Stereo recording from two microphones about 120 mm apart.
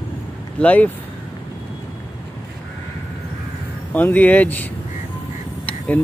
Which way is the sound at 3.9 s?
15° left (ahead or behind).